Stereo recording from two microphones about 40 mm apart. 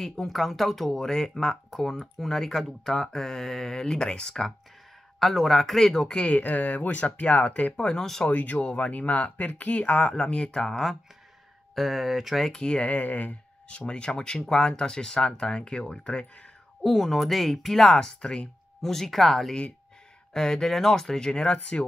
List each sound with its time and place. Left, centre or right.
0.2 s speech: centre
5.2 s a man's voice: centre
6.0 s speech: left
8.3 s speech: left
10.1 s speech: centre
11.7 s a man's voice: centre
12.5 s speech: left
16.8 s a man's voice: centre
17.9 s speech: left
18.8 s a man's voice: centre
20.3 s speech: centre